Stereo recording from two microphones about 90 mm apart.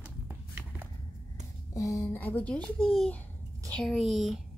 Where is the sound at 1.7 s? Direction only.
35° left (ahead or behind).